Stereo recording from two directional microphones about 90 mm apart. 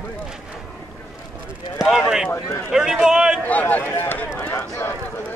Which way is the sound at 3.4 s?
20° left (ahead or behind).